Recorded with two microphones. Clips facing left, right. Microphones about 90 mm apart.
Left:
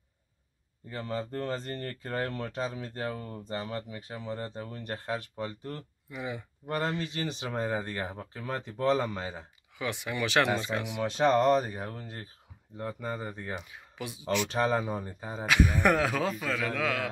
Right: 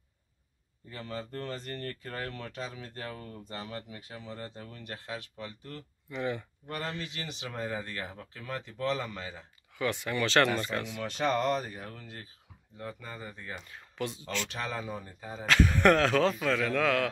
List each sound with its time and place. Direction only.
0.8 s speech: 35° left (ahead or behind)
6.0 s speech: 10° left (ahead or behind)
6.7 s speech: 30° left (ahead or behind)
9.8 s speech: 15° left (ahead or behind); by 13.6 s 40° left (ahead or behind)
13.6 s a man's voice: 10° left (ahead or behind)
14.5 s speech: 35° left (ahead or behind)
15.4 s a man's voice: 10° left (ahead or behind)